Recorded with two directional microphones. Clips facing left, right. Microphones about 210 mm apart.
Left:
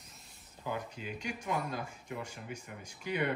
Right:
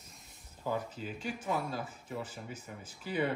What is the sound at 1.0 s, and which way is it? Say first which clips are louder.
Speech: right 1 dB; 35° right (ahead or behind).